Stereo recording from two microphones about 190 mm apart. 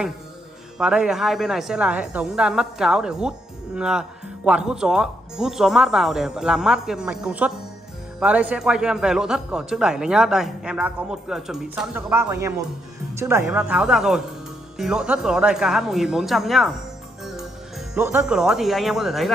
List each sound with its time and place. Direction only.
0.7 s a man's voice: 5° right (ahead or behind)